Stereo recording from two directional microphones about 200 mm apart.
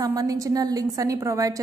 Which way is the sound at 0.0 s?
15° right (ahead or behind).